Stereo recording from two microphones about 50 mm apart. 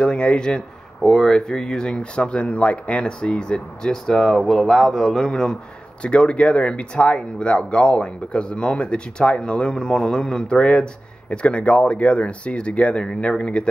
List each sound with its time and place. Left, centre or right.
0.0 s speech: centre